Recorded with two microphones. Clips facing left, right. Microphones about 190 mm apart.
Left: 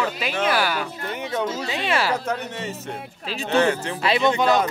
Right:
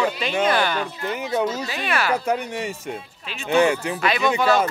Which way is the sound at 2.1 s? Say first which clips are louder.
Right 3 dB; 10° right (ahead or behind).